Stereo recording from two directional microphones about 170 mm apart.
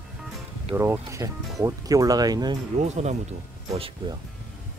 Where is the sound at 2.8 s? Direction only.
40° right (ahead or behind).